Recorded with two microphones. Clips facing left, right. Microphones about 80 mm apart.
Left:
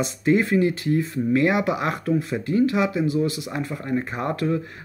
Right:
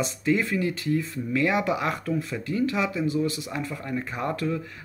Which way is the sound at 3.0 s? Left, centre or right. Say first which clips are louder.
Left 3 dB; right.